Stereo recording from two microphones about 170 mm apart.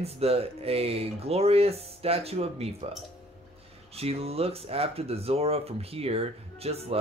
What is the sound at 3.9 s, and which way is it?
Speech, 35° right (ahead or behind).